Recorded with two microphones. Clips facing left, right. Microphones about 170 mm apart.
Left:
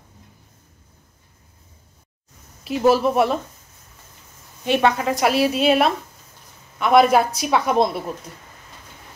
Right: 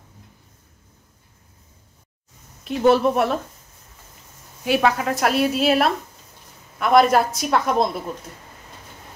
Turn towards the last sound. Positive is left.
turn(degrees=0)  # may be behind; listen again after turning